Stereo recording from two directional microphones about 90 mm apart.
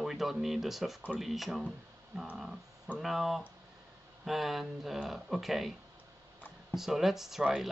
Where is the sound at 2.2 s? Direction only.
5° right (ahead or behind).